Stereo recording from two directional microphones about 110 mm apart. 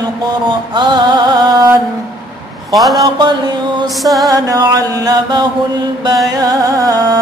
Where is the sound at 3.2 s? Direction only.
45° right (ahead or behind).